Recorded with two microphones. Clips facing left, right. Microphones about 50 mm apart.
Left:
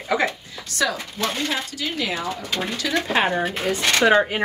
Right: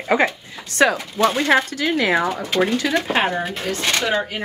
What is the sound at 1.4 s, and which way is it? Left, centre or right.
Speech, right.